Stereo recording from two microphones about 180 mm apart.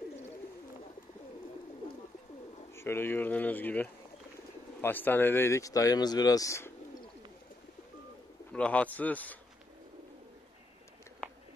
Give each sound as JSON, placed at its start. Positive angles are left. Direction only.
{"t": 2.7, "sound": "speech", "side_deg": 15}
{"t": 8.5, "sound": "speech", "side_deg": 5}